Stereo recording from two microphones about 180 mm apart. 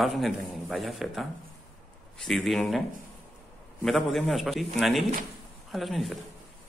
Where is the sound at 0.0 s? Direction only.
Centre (ahead or behind).